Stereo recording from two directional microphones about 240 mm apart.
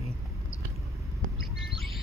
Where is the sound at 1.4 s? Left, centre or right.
Centre.